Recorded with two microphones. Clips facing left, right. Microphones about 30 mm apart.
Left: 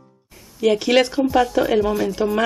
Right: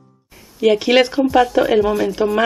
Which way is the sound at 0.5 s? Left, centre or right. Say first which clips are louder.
Right 3 dB; centre.